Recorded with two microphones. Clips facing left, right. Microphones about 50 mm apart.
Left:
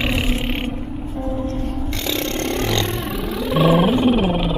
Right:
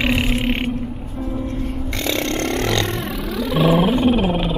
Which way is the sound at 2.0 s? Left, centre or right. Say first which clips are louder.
Right 2 dB; centre.